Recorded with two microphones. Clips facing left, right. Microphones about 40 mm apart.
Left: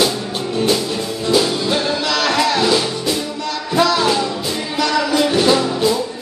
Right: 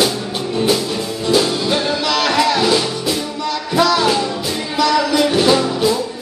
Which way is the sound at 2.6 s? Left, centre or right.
Centre.